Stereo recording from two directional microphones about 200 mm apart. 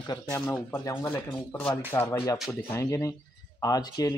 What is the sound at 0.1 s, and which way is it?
Speech, 10° left (ahead or behind).